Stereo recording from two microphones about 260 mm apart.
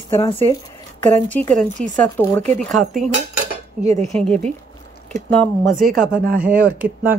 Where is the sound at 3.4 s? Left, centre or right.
Right.